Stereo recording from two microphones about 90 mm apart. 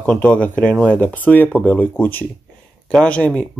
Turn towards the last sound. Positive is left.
turn(degrees=10)  # may be behind; listen again after turning